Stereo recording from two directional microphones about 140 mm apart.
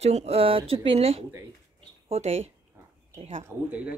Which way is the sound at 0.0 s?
50° right (ahead or behind).